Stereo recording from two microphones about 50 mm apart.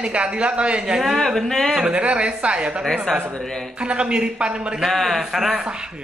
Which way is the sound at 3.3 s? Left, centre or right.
Centre.